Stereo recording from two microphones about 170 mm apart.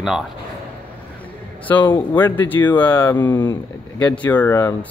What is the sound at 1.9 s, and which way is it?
Speech, 10° left (ahead or behind).